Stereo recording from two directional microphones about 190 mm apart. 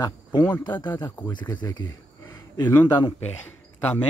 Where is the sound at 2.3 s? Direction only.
20° left (ahead or behind).